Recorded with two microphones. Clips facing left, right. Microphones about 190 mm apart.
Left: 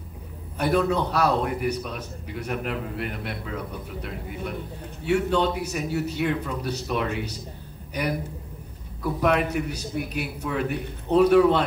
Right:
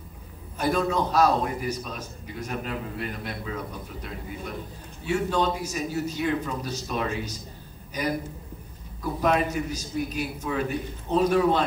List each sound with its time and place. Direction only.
0.6 s a man's voice: 65° left (ahead or behind)
9.0 s a man's voice: 65° left (ahead or behind)